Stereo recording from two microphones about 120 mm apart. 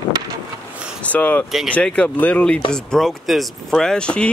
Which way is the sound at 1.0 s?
10° left (ahead or behind).